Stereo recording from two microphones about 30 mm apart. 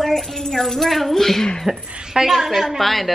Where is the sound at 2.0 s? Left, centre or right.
Right.